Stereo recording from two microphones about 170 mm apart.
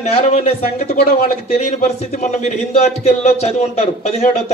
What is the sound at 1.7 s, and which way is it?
A man's voice, 40° left (ahead or behind).